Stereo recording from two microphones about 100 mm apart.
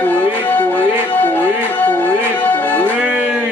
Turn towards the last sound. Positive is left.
turn(degrees=-15)  # may be behind; listen again after turning